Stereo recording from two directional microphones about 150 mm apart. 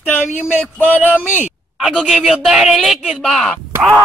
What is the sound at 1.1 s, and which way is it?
A man's voice, 5° right (ahead or behind).